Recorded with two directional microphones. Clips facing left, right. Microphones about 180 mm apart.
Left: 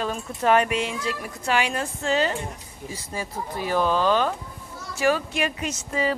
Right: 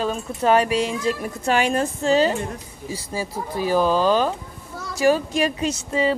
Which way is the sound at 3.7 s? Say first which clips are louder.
Right 3 dB; 5° right (ahead or behind).